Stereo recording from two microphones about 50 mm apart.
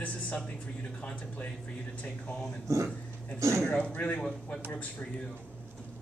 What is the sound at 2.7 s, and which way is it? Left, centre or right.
Speech, right.